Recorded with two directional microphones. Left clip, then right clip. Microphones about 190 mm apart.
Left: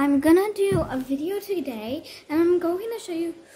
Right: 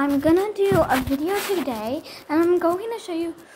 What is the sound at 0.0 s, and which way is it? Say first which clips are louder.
Speech: even; 45° left (ahead or behind).